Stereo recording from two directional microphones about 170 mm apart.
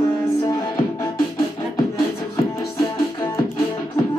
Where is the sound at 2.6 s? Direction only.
15° left (ahead or behind).